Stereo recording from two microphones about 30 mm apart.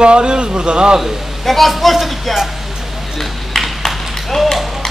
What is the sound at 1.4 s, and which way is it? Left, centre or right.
Speech, centre.